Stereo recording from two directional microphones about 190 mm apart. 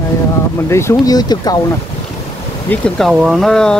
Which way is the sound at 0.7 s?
15° left (ahead or behind).